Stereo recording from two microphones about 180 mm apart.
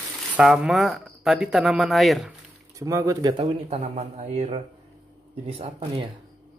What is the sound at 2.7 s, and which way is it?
Speech, 20° right (ahead or behind).